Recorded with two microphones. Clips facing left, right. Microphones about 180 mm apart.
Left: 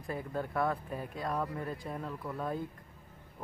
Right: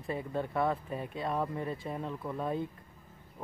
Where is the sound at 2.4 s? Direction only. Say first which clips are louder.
Right 2 dB; centre (ahead or behind).